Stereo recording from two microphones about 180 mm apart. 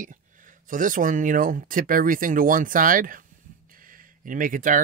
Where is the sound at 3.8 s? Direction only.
50° right (ahead or behind).